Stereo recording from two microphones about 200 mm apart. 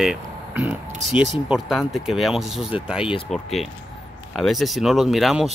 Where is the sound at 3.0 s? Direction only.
25° left (ahead or behind).